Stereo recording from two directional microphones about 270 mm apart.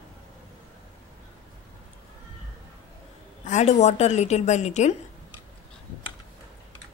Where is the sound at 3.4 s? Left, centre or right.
Left.